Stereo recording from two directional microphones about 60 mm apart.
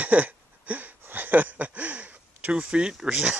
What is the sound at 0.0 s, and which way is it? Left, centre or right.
Wheeze, right.